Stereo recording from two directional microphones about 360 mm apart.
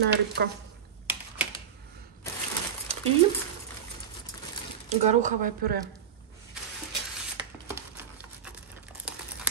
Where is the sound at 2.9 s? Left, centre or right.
Centre.